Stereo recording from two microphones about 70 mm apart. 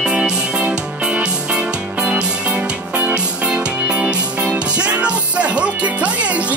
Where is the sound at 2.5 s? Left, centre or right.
Right.